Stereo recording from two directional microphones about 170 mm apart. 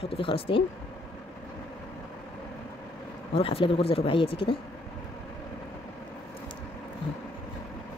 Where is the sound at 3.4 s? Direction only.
35° left (ahead or behind).